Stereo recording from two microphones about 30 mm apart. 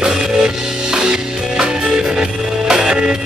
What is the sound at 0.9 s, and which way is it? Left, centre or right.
Music, right.